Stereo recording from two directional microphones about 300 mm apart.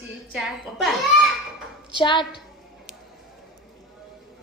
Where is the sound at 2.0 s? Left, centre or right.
Centre.